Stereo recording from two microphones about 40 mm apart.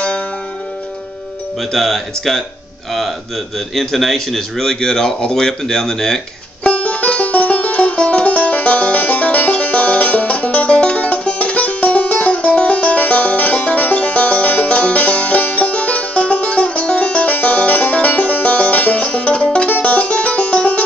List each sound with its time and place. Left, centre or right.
1.6 s speech: centre
3.5 s speech: centre
6.6 s music: left